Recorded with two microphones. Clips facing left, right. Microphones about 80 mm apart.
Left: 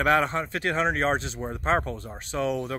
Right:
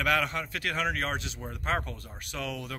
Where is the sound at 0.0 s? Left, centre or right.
Left.